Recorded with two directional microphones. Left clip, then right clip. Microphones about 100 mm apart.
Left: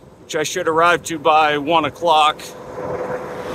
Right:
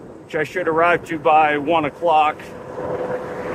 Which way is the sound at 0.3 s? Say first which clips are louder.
Left 1 dB; 50° left (ahead or behind).